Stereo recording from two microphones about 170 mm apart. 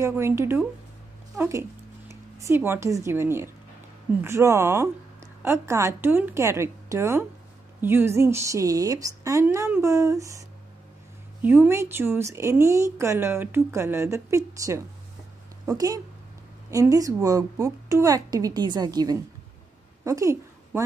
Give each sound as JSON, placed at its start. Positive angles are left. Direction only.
{"t": 0.0, "sound": "a woman's voice", "side_deg": -15}
{"t": 11.4, "sound": "a woman's voice", "side_deg": -10}
{"t": 16.7, "sound": "a woman's voice", "side_deg": -20}